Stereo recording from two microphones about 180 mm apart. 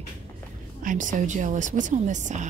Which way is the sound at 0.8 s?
45° right (ahead or behind).